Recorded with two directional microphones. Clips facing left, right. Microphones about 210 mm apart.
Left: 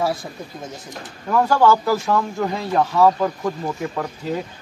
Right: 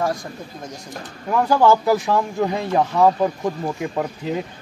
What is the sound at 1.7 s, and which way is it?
Speech, 15° right (ahead or behind).